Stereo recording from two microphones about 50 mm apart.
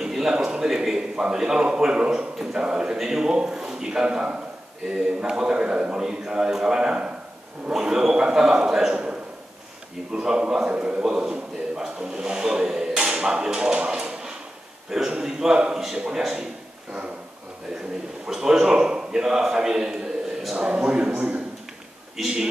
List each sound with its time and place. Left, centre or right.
0.0 s a man's voice: centre
7.7 s a man's voice: centre
8.9 s a sound: right
10.1 s a man's voice: centre
18.2 s a man's voice: centre